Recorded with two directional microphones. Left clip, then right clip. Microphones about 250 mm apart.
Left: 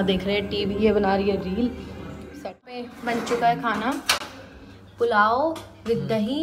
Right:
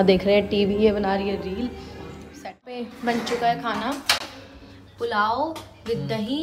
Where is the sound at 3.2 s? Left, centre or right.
Centre.